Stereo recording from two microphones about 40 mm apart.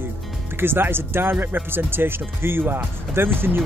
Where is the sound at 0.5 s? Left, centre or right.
Right.